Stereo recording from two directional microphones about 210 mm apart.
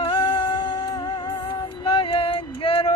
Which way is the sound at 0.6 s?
20° left (ahead or behind).